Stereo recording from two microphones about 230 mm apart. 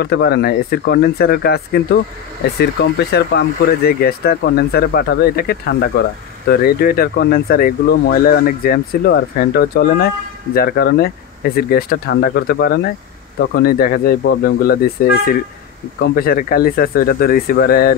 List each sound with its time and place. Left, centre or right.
0.0 s speech: left